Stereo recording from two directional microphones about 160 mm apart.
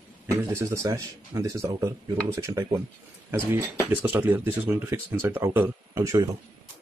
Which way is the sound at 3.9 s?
10° right (ahead or behind).